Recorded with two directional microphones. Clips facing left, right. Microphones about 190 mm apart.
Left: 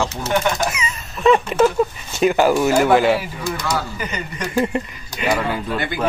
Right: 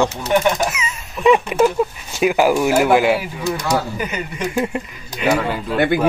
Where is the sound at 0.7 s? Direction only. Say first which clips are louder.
Even; 5° right (ahead or behind).